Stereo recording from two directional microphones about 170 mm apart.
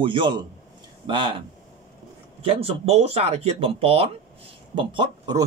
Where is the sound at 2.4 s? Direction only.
35° right (ahead or behind).